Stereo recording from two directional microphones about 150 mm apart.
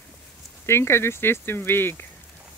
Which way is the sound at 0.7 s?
15° left (ahead or behind).